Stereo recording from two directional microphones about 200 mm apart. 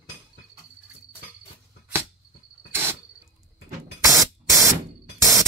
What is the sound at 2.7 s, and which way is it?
Cricket, 10° right (ahead or behind).